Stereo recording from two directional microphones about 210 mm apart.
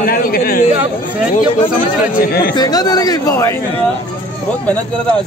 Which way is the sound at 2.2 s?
45° left (ahead or behind).